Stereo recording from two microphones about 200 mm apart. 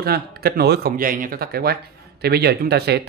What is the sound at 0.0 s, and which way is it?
Speech, 50° right (ahead or behind).